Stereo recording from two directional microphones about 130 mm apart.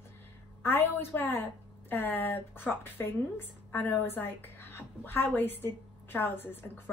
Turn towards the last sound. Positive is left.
turn(degrees=15)  # may be behind; listen again after turning